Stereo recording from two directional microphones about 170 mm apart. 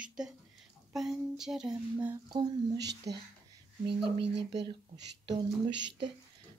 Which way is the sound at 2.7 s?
85° right.